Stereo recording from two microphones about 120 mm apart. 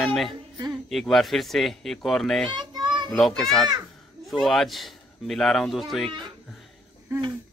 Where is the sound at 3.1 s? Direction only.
5° left (ahead or behind).